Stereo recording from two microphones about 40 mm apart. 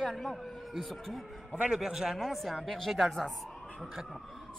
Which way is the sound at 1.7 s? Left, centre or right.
Centre.